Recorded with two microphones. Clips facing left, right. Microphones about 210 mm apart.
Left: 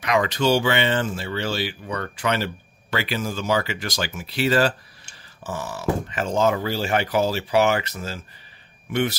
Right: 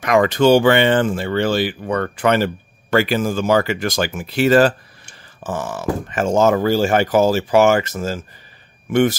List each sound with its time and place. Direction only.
0.0 s speech: 50° right (ahead or behind)